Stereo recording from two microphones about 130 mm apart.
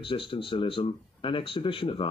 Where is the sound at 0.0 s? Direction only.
40° left (ahead or behind).